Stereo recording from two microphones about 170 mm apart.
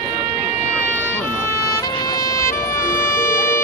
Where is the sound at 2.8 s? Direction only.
55° left (ahead or behind).